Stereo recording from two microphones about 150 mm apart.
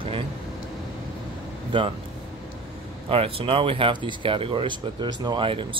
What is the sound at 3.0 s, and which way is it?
Speech, 40° right (ahead or behind).